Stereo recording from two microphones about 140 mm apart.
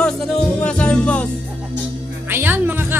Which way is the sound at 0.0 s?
5° left (ahead or behind).